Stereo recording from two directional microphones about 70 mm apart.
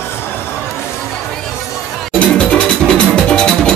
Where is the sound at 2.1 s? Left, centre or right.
Centre.